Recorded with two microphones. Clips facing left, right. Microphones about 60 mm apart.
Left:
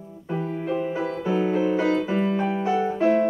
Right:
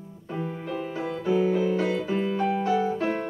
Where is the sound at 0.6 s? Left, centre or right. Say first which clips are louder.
Left 5 dB; centre.